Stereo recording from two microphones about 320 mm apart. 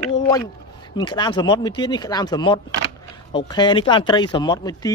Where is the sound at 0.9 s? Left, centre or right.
Centre.